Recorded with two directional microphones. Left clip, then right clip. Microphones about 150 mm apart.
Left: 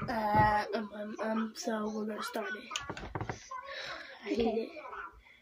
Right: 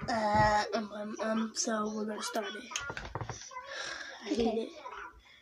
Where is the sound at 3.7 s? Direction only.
5° left (ahead or behind).